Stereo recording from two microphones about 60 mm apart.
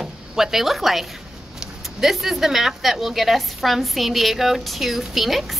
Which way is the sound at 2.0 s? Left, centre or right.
Centre.